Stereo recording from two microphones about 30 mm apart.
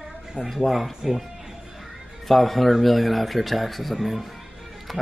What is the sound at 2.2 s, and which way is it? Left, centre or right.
Speech, centre.